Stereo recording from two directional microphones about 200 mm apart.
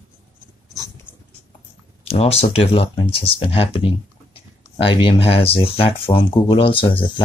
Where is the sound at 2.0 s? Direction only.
30° left (ahead or behind).